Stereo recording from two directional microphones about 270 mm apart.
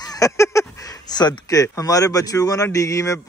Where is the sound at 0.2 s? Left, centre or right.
Centre.